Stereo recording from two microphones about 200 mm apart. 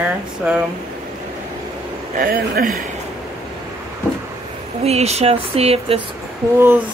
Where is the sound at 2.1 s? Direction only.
50° right (ahead or behind).